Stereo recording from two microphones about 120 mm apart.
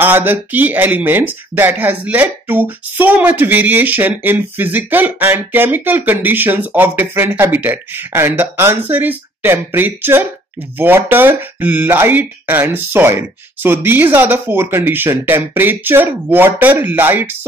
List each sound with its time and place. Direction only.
0.0 s speech: 15° right (ahead or behind)